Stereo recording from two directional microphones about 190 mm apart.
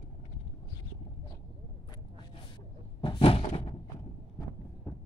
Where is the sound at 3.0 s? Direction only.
30° left (ahead or behind).